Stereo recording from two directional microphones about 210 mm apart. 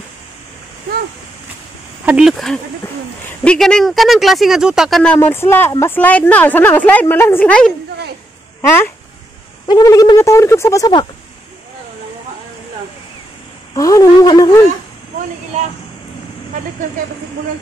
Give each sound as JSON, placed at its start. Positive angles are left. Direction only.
{"t": 2.0, "sound": "speech", "side_deg": -5}
{"t": 13.7, "sound": "speech", "side_deg": 15}